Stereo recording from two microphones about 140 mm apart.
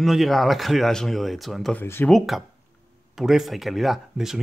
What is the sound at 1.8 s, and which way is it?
Speech, 15° left (ahead or behind).